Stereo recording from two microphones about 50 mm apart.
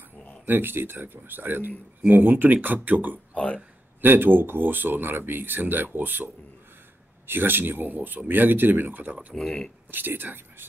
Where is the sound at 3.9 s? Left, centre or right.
Right.